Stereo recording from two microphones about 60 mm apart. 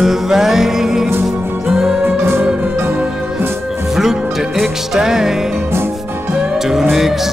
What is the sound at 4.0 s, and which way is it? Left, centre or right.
Music, centre.